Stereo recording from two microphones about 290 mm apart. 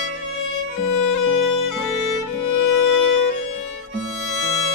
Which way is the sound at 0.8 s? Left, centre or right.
Left.